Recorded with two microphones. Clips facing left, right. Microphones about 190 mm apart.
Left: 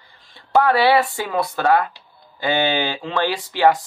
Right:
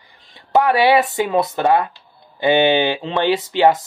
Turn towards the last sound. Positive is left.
turn(degrees=-20)  # may be behind; listen again after turning